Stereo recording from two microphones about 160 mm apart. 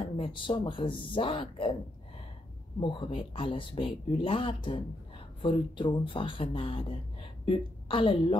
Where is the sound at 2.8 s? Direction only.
30° left (ahead or behind).